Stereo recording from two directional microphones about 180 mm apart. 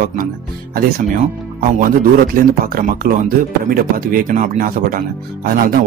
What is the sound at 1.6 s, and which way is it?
Speech, 50° right (ahead or behind).